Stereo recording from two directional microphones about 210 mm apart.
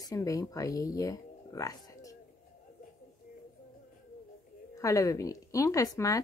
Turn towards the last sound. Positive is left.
turn(degrees=15)  # may be behind; listen again after turning